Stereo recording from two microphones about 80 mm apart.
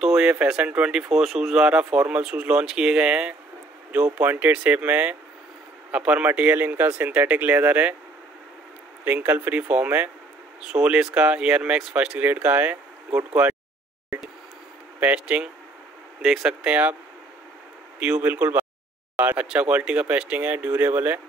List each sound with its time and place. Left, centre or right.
0.0 s speech: centre
9.0 s speech: right
14.1 s a sound: centre
15.0 s speech: centre
17.9 s speech: centre